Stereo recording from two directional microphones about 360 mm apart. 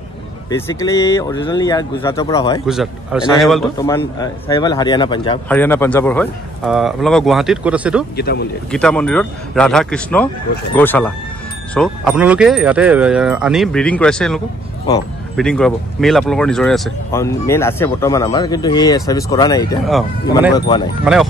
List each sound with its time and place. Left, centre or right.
0.5 s speech: centre
2.6 s a man's voice: centre
8.2 s speech: left
8.7 s a man's voice: centre
19.9 s a man's voice: centre
20.5 s speech: centre
21.0 s a man's voice: centre